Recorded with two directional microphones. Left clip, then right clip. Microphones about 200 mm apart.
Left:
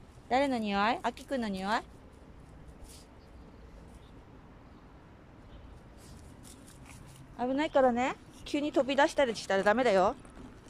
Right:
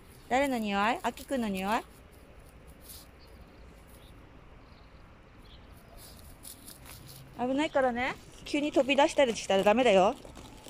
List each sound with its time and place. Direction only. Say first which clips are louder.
0.3 s speech: right 1 dB; 5° left (ahead or behind)
7.3 s speech: left 1 dB; centre (ahead or behind)